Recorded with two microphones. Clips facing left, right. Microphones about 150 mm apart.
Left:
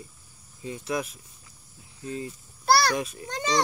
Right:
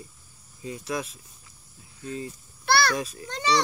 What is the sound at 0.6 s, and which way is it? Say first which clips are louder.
Speech: left 1 dB; 25° left (ahead or behind).